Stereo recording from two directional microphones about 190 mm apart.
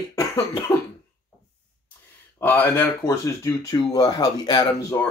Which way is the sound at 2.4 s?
10° left (ahead or behind).